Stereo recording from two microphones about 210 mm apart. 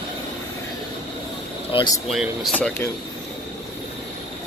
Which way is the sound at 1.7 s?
20° left (ahead or behind).